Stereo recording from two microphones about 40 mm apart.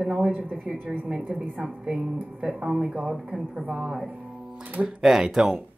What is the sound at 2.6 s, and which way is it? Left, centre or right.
Speech, centre.